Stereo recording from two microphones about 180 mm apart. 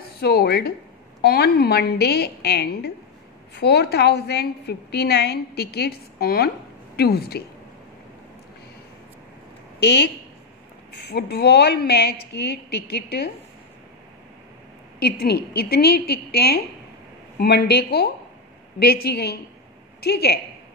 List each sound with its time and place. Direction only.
0.2 s a woman's voice: 60° left (ahead or behind)
9.8 s a woman's voice: 70° left (ahead or behind)
15.0 s a woman's voice: 65° left (ahead or behind)